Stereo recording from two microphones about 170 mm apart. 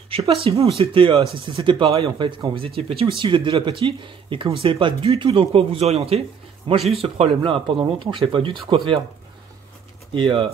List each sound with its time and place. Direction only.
0.1 s speech: 35° right (ahead or behind)
6.7 s speech: 25° right (ahead or behind)
10.1 s speech: 30° right (ahead or behind)